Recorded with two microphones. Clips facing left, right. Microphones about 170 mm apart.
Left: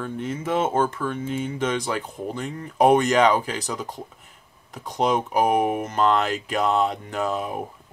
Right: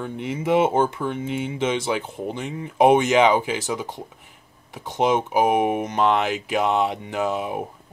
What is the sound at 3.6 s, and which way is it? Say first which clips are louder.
Speech: right 3 dB; centre (ahead or behind).